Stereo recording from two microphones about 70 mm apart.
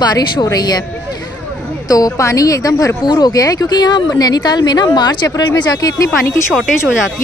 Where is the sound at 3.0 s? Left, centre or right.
Left.